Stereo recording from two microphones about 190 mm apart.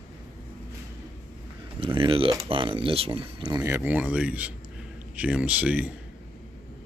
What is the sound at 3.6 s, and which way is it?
Speech, 10° right (ahead or behind).